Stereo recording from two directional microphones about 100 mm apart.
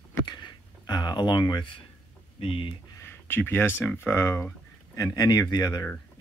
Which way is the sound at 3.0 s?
20° left (ahead or behind).